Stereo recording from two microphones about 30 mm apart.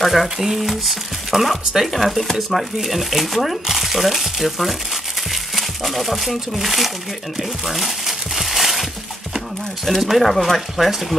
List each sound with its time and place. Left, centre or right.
0.0 s speech: centre
8.4 s a sound: centre
10.0 s speech: centre